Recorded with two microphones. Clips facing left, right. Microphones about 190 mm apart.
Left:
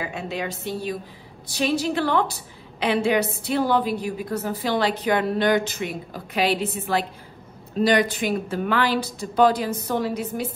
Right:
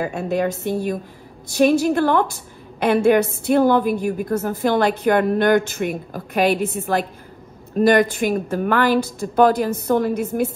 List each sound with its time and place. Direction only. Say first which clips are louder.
0.0 s a woman's voice: right 8 dB; 55° right (ahead or behind)
7.7 s a woman's voice: right 5 dB; 50° right (ahead or behind)